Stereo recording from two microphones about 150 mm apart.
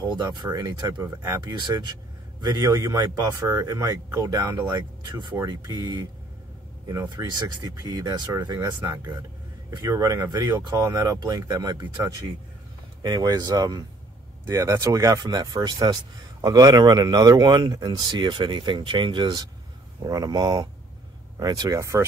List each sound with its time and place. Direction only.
0.0 s speech: 30° right (ahead or behind)